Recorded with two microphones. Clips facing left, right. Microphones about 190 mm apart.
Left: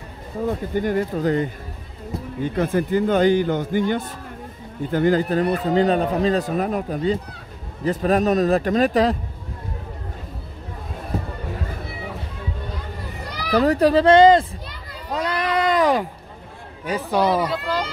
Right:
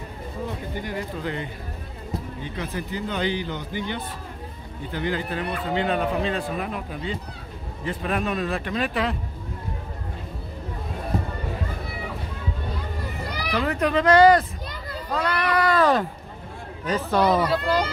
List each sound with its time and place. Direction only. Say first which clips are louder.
0.5 s a man's voice: left 13 dB; 50° left (ahead or behind)
13.5 s speech: left 8 dB; 40° left (ahead or behind)
15.1 s a sound: left 1 dB; 20° left (ahead or behind)
16.8 s speech: left 1 dB; 10° left (ahead or behind)